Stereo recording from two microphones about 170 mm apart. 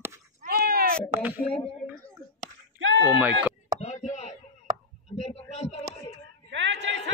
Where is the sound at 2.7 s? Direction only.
90° right.